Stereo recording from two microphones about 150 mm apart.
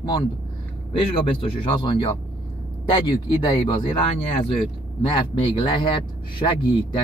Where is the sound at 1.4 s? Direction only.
35° left (ahead or behind).